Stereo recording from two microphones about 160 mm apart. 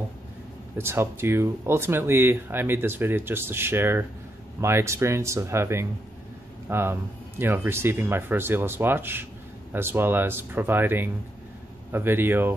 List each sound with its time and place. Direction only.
0.7 s speech: 15° right (ahead or behind)